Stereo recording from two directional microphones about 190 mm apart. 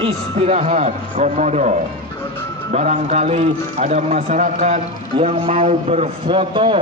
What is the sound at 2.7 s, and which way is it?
A man's voice, 35° right (ahead or behind).